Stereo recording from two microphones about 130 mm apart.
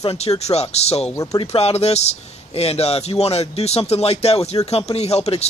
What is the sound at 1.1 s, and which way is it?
Speech, 25° left (ahead or behind).